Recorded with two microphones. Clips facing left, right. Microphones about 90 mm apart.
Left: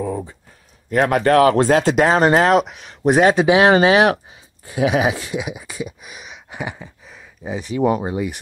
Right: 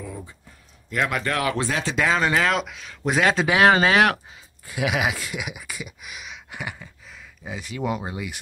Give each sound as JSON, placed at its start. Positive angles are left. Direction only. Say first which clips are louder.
{"t": 0.0, "sound": "a sound", "louder": "left 12 dB", "side_deg": 50}
{"t": 0.8, "sound": "speech", "louder": "left 9 dB", "side_deg": 45}
{"t": 3.3, "sound": "speech", "louder": "left 5 dB", "side_deg": 20}